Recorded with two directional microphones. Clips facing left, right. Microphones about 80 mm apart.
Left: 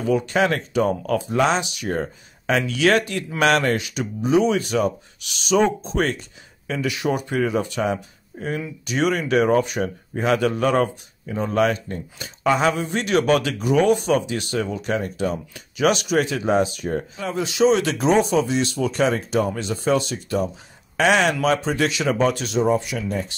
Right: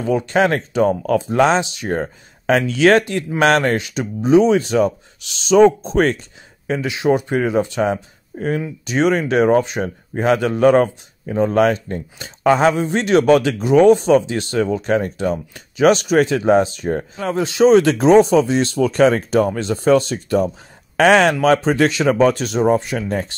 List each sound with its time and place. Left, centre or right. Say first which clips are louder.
0.0 s speech: right 3 dB; right
6.7 s speech: right 6 dB; right
8.4 s speech: right 6 dB; right